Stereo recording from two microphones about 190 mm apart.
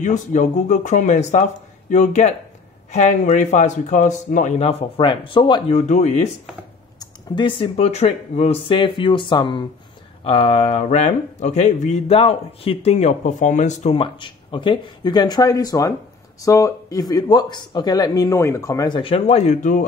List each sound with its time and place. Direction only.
0.0 s speech: 40° left (ahead or behind)
7.0 s speech: 25° left (ahead or behind); by 19.8 s 40° left (ahead or behind)